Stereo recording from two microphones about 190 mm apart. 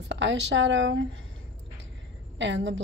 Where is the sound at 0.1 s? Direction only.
75° right (ahead or behind).